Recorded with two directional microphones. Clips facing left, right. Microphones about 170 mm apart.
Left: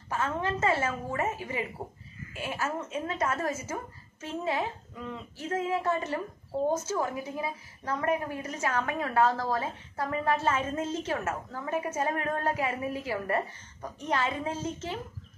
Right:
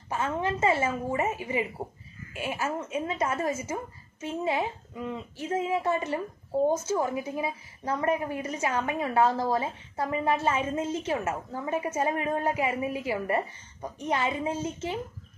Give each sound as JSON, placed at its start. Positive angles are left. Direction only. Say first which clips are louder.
{"t": 0.1, "sound": "a woman's voice", "louder": "right 2 dB", "side_deg": -15}